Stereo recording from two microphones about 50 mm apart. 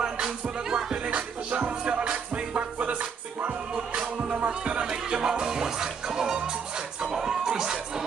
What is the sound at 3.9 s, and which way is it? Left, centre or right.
Music, right.